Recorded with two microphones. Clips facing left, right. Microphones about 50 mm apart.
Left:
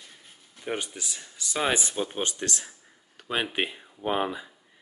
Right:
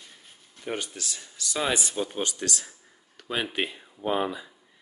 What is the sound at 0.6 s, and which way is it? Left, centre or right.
Speech, centre.